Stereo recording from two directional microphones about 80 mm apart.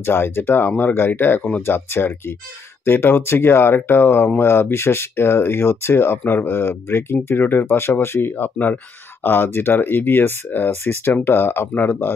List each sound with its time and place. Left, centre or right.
0.0 s speech: left